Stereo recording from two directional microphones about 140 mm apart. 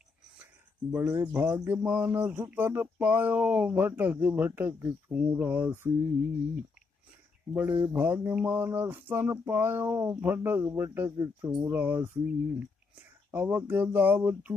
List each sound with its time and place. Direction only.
0.9 s speech: 15° right (ahead or behind)
7.5 s speech: 15° right (ahead or behind)